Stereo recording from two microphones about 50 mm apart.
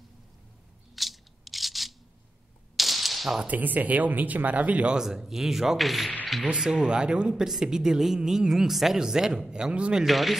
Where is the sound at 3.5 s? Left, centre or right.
Right.